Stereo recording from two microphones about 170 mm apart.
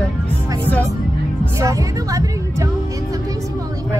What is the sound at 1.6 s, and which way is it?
A woman's voice, 20° right (ahead or behind).